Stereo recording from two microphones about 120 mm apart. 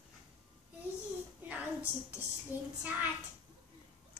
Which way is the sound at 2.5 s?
15° right (ahead or behind).